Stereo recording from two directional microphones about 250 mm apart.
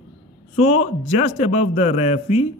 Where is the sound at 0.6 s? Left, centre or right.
Left.